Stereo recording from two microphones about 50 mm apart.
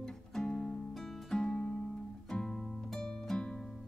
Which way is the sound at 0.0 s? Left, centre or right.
Centre.